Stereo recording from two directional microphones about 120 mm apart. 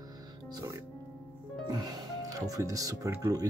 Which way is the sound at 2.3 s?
30° right (ahead or behind).